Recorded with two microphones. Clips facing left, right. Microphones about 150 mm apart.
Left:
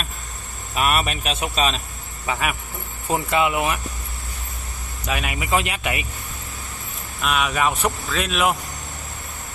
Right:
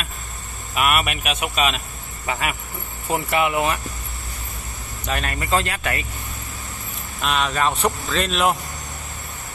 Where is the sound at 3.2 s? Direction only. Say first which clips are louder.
Left 1 dB; 20° left (ahead or behind).